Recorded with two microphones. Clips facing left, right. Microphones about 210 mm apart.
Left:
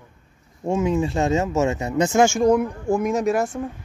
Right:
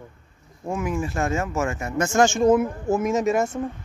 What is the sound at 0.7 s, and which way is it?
Speech, 25° left (ahead or behind).